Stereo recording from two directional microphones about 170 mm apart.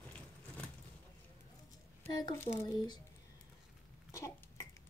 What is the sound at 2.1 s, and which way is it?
Speech, 25° left (ahead or behind).